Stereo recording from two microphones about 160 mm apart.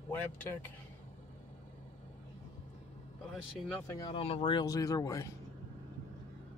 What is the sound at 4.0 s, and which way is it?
Speech, 35° left (ahead or behind).